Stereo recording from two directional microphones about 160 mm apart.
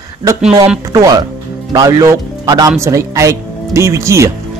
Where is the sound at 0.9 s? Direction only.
25° right (ahead or behind).